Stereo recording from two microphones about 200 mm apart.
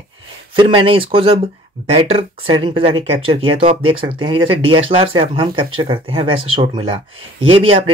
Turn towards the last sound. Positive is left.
turn(degrees=-25)  # may be behind; listen again after turning